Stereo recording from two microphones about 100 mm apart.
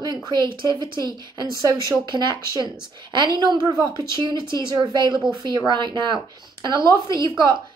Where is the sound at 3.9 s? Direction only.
50° right (ahead or behind).